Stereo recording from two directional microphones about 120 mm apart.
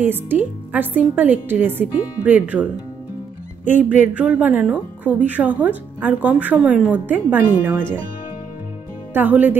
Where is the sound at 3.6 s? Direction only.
90° left.